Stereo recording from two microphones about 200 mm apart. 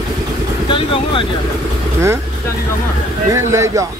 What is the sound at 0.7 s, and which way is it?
Speech, 25° left (ahead or behind).